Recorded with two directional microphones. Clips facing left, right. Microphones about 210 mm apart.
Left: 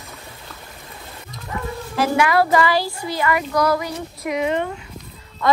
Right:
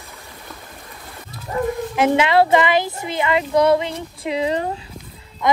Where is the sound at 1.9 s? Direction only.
20° right (ahead or behind).